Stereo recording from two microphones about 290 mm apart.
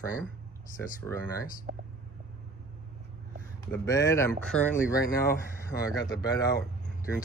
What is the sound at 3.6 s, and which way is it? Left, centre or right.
Speech, centre.